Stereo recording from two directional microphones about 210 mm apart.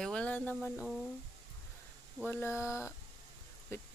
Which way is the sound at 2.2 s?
10° left (ahead or behind).